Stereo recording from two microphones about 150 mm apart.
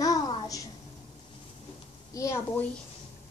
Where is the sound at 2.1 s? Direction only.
20° left (ahead or behind).